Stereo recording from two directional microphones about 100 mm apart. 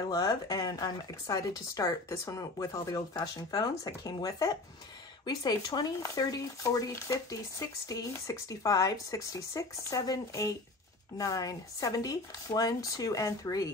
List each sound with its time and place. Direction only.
0.1 s speech: 40° left (ahead or behind)